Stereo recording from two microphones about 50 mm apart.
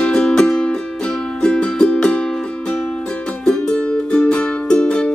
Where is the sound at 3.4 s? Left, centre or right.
Centre.